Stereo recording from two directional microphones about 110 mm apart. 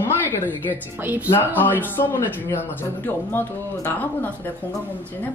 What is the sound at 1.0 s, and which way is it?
Speech, 15° right (ahead or behind).